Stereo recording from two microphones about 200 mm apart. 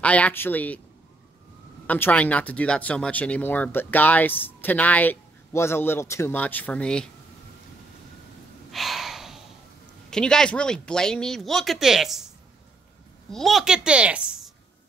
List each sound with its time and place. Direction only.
0.0 s speech: 5° left (ahead or behind)
1.9 s speech: 10° left (ahead or behind)
8.7 s gasp: centre (ahead or behind)
10.0 s speech: 5° left (ahead or behind)
13.3 s speech: centre (ahead or behind)